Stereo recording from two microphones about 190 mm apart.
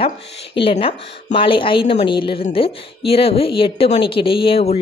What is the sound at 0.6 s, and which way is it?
Speech, 30° left (ahead or behind).